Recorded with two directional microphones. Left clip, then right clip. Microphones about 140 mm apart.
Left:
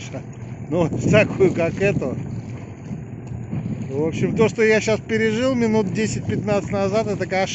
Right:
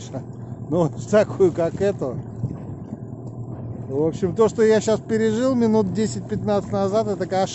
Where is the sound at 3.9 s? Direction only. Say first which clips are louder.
Right 1 dB; 30° right (ahead or behind).